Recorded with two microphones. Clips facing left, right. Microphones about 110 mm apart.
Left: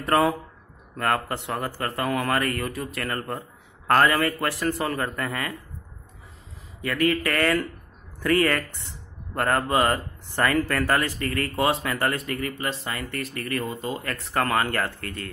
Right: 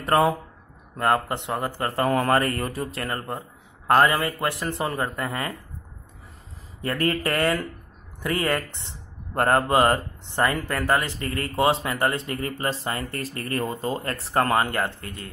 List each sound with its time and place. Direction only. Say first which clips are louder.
0.0 s speech: right 1 dB; 20° right (ahead or behind)
6.8 s speech: left 1 dB; 35° right (ahead or behind); by 15.2 s 20° right (ahead or behind)